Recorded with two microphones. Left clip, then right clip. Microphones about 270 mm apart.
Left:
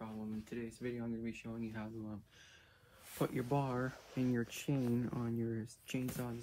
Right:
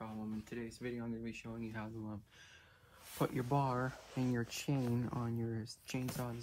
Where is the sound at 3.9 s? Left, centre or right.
Right.